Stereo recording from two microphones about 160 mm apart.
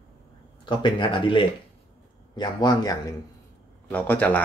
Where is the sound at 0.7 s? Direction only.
30° left (ahead or behind).